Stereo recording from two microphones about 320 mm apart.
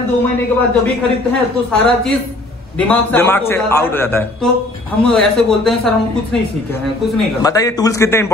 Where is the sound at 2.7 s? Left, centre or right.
Centre.